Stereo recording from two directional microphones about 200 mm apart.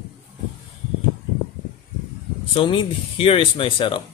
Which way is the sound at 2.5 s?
25° left (ahead or behind).